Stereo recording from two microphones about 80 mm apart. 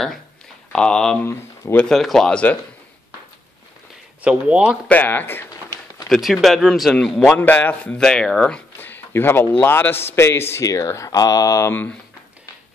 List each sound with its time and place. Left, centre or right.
0.7 s chopping: centre
1.9 s speech: centre
4.2 s speech: centre
4.8 s speech: left
6.0 s speech: centre
7.3 s a man's voice: left
8.0 s chopping: centre
8.7 s a sound: left
9.6 s speech: left
11.7 s a man's voice: left